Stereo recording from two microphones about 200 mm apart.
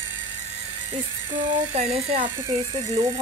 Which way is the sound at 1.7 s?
35° right (ahead or behind).